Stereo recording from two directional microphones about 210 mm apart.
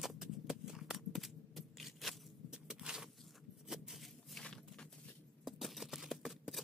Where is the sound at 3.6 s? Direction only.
Centre (ahead or behind).